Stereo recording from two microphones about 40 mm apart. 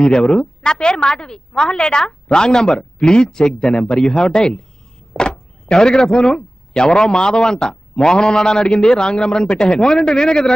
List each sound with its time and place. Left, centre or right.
0.6 s a woman's voice: left
5.1 s vehicle: centre
5.7 s a woman's voice: left